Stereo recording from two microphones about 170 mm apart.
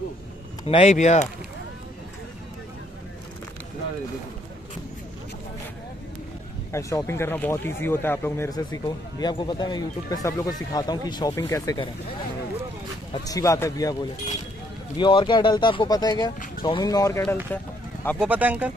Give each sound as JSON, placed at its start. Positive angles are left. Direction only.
{"t": 0.7, "sound": "speech", "side_deg": 40}
{"t": 6.7, "sound": "speech", "side_deg": 20}
{"t": 13.1, "sound": "speech", "side_deg": 20}
{"t": 15.0, "sound": "speech", "side_deg": 30}
{"t": 17.5, "sound": "speech", "side_deg": 10}
{"t": 18.2, "sound": "speech", "side_deg": -10}